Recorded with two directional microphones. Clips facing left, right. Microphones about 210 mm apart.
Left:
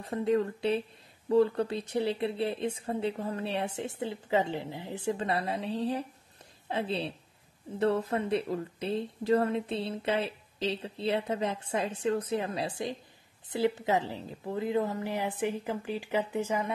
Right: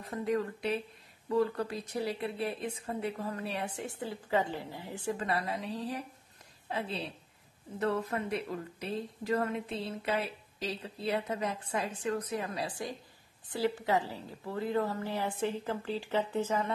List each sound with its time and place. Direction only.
0.0 s a woman's voice: 30° left (ahead or behind); by 16.7 s 10° left (ahead or behind)